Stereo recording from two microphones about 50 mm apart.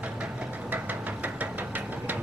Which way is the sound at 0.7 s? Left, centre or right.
Right.